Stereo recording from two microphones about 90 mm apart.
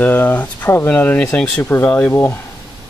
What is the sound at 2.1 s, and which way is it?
Speech, 25° left (ahead or behind).